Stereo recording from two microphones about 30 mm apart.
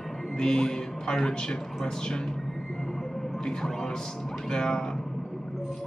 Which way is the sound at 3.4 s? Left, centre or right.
Left.